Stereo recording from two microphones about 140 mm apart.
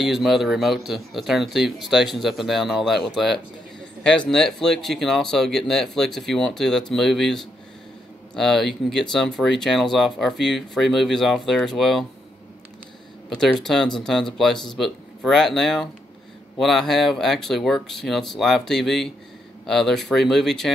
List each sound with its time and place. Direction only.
0.0 s speech: centre (ahead or behind)
13.4 s speech: centre (ahead or behind)